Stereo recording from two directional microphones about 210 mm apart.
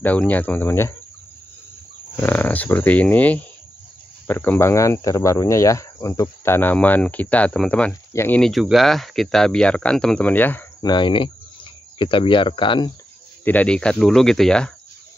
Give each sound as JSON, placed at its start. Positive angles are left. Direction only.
{"t": 0.0, "sound": "speech", "side_deg": 5}
{"t": 2.1, "sound": "speech", "side_deg": 10}
{"t": 10.9, "sound": "speech", "side_deg": 25}
{"t": 13.4, "sound": "speech", "side_deg": 10}